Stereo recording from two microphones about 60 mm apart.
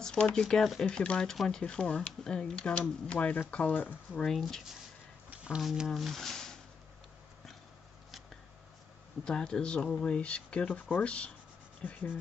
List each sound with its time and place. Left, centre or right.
0.0 s speech: centre
4.2 s speech: centre
5.9 s speech: centre
9.2 s speech: centre